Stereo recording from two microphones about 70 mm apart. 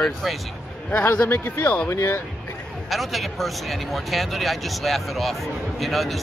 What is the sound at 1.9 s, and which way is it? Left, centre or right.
Speech, left.